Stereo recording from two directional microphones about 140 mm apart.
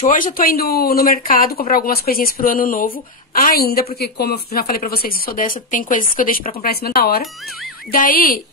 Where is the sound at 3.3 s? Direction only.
90° left.